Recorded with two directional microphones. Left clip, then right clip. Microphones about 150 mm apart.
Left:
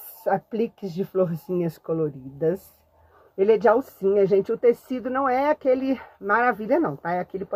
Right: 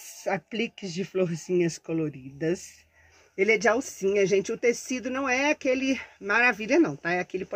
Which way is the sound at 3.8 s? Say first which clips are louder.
Left 4 dB; 15° right (ahead or behind).